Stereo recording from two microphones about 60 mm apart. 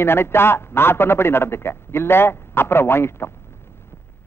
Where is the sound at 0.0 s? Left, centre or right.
Left.